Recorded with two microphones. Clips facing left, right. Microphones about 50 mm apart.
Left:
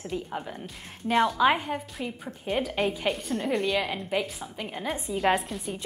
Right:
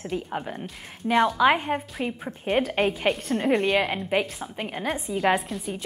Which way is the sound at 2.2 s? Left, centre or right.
Right.